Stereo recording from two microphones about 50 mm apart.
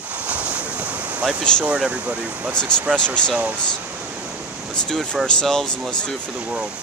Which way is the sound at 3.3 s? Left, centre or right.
Right.